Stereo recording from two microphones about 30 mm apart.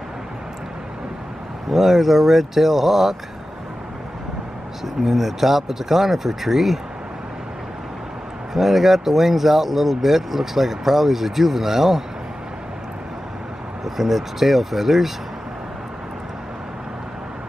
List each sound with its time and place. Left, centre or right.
1.7 s speech: centre
4.8 s speech: centre
8.5 s speech: centre
13.8 s speech: centre